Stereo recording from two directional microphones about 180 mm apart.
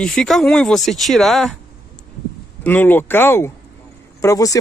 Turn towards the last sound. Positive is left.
turn(degrees=20)  # may be behind; listen again after turning